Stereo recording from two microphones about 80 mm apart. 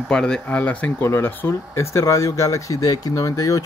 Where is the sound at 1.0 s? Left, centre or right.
Left.